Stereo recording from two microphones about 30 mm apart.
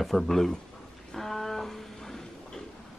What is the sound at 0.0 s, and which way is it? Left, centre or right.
Speech, centre.